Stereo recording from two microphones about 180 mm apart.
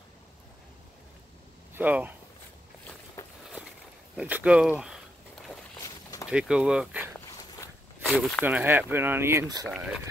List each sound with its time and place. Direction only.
1.7 s speech: 10° right (ahead or behind)
3.2 s a sound: 15° left (ahead or behind)
4.2 s speech: 5° right (ahead or behind)
5.8 s a sound: 20° left (ahead or behind)
6.2 s speech: 5° right (ahead or behind)
7.2 s dog: 15° left (ahead or behind)
8.1 s speech: centre (ahead or behind); by 9.7 s 20° right (ahead or behind)
9.7 s speech: centre (ahead or behind)